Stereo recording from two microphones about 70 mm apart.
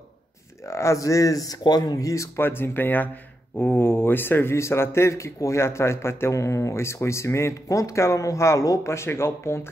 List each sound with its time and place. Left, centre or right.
0.7 s speech: left
2.3 s speech: left